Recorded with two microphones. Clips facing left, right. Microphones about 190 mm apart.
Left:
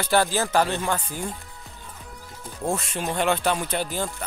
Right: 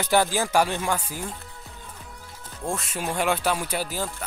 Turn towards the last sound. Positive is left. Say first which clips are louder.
# left 2 dB
turn(degrees=-5)  # may be behind; listen again after turning